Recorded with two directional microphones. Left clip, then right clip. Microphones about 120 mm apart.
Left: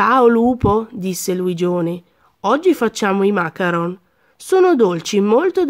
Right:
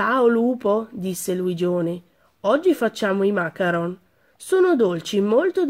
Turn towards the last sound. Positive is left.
turn(degrees=45)  # may be behind; listen again after turning